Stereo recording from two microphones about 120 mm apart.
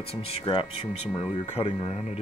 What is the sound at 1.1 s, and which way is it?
Speech, 35° left (ahead or behind).